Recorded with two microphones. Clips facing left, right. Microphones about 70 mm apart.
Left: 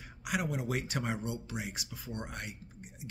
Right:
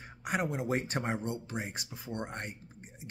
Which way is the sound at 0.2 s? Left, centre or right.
Right.